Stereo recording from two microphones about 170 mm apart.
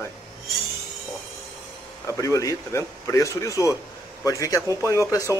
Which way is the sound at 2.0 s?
20° left (ahead or behind).